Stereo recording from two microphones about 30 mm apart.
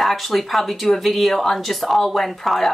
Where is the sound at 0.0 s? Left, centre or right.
Centre.